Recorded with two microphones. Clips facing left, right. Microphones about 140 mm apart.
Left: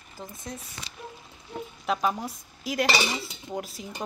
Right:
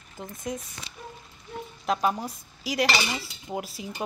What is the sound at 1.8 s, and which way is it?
Speech, centre (ahead or behind).